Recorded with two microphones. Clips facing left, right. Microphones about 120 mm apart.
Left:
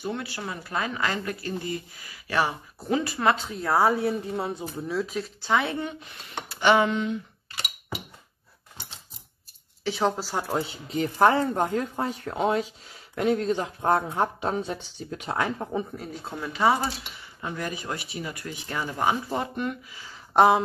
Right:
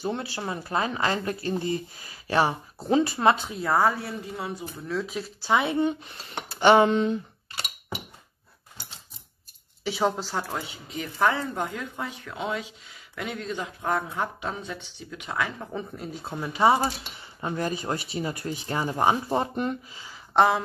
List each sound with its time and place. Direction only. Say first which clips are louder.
0.0 s speech: right 2 dB; 30° right (ahead or behind)
3.5 s a woman's voice: even; centre (ahead or behind)
3.8 s speech: left 3 dB; 20° left (ahead or behind)
4.8 s a woman's voice: left 1 dB; 5° left (ahead or behind)
5.5 s speech: right 2 dB; 15° right (ahead or behind)
5.9 s speech: right 8 dB; 30° right (ahead or behind)
9.8 s a woman's voice: even; centre (ahead or behind)
11.0 s speech: left 5 dB; 35° left (ahead or behind)
16.3 s speech: right 2 dB; 20° right (ahead or behind)
20.3 s speech: left 2 dB; 15° left (ahead or behind)